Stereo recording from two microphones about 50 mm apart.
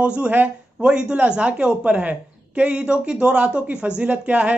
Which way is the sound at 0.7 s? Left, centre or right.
Centre.